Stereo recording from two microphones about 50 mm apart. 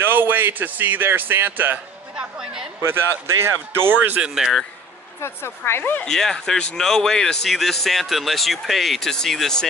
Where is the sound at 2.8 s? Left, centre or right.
Right.